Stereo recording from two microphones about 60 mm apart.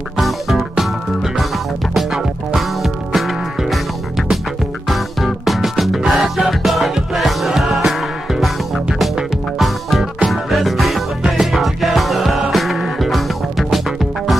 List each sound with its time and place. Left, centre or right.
0.2 s music: centre
4.8 s music: centre